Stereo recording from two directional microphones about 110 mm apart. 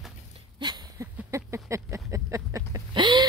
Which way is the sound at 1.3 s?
25° right (ahead or behind).